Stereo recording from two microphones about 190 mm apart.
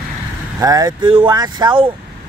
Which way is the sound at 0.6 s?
20° right (ahead or behind).